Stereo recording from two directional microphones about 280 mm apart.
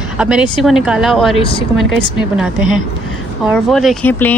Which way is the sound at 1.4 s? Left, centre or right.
Centre.